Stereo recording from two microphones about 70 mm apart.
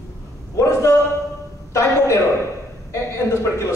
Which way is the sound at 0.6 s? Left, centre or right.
Left.